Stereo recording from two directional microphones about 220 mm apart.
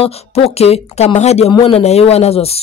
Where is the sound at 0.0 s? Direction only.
25° left (ahead or behind).